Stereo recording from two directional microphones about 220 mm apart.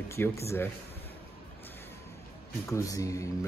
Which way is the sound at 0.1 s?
10° left (ahead or behind).